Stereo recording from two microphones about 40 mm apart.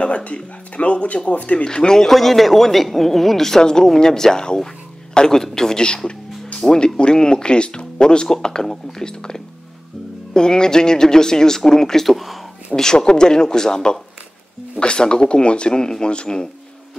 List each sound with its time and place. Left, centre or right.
0.0 s speech: left
1.7 s speech: centre
2.1 s a man's voice: centre
7.0 s speech: left; by 12.4 s centre
12.7 s speech: centre